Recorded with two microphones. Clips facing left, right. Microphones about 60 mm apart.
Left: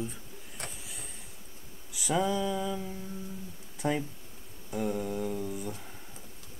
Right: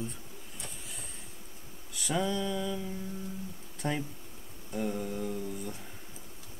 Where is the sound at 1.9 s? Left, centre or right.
Centre.